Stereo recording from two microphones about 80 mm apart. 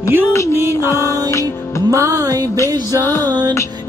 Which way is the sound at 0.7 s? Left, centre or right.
Left.